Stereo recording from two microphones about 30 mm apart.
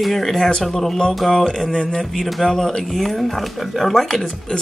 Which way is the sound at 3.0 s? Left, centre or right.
Centre.